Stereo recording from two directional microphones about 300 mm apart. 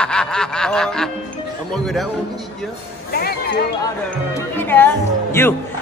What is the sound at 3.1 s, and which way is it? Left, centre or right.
Music, left.